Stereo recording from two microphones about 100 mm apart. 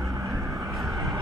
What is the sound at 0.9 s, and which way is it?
Vehicle, 35° right (ahead or behind).